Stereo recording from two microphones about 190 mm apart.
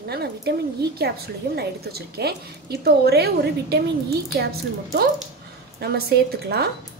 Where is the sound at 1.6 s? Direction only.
55° right (ahead or behind).